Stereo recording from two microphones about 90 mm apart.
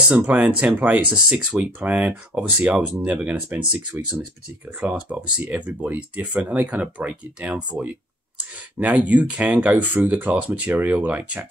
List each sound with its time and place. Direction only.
0.2 s speech: 20° right (ahead or behind)